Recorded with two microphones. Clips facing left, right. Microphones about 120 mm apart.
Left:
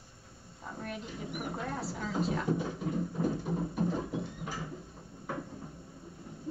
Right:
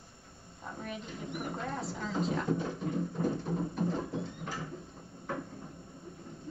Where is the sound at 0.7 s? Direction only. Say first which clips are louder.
Left 1 dB; centre (ahead or behind).